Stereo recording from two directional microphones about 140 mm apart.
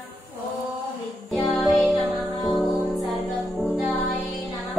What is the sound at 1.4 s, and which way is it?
Music, 5° left (ahead or behind).